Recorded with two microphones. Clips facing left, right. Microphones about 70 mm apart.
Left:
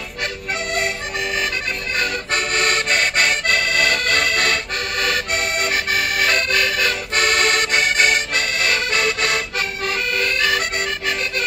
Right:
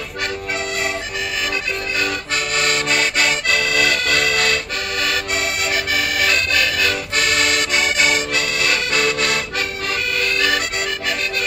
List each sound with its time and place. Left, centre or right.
2.0 s accordion: left